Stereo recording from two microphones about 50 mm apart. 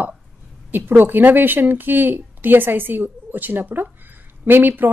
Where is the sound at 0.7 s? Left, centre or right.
Right.